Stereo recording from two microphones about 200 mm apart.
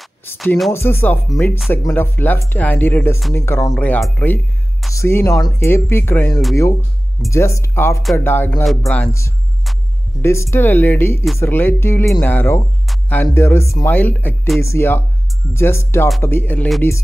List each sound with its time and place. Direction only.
0.4 s speech: centre (ahead or behind)
0.7 s speech: 10° left (ahead or behind)